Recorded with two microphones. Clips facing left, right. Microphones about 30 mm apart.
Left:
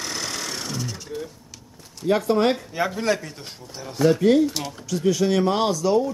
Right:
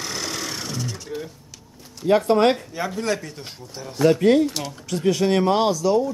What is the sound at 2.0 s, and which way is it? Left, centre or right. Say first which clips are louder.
Speech: right 3 dB; centre.